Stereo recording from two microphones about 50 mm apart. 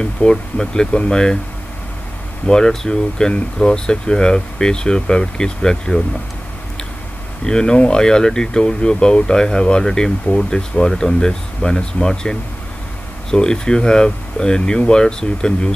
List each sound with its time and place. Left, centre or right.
0.0 s speech: centre
2.4 s speech: centre
7.4 s speech: centre